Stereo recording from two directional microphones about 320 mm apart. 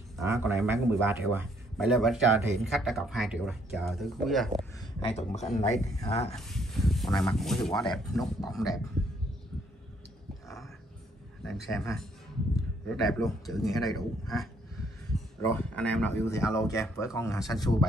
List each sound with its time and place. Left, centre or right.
0.2 s a man's voice: centre
4.7 s speech: centre
6.3 s a man's voice: centre
11.4 s a man's voice: centre